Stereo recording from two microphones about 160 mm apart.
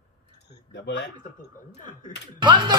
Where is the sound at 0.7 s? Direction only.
90° left.